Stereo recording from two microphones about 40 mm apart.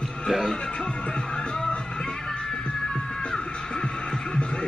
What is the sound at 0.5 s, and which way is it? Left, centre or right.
Music, centre.